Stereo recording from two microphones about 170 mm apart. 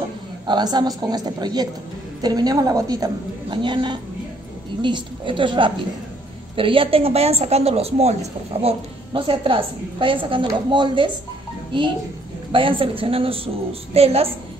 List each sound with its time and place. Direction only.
0.5 s a woman's voice: 25° right (ahead or behind)